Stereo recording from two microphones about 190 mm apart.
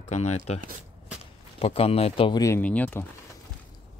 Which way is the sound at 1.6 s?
30° left (ahead or behind).